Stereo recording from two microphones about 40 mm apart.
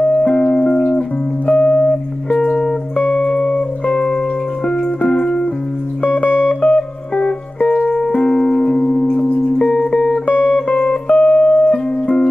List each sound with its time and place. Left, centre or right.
0.0 s music: left
1.5 s music: left
2.3 s music: centre
3.8 s music: left
6.6 s music: left
9.1 s chirp tone: left
10.3 s music: right
10.7 s music: left
11.7 s music: left